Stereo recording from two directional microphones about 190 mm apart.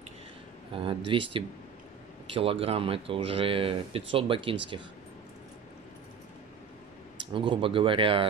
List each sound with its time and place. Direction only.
0.7 s speech: 25° right (ahead or behind)
7.3 s speech: 25° right (ahead or behind)